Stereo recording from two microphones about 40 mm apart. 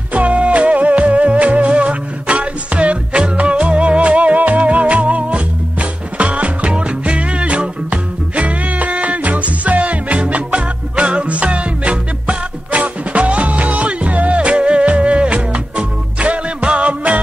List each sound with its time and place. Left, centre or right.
0.1 s music: right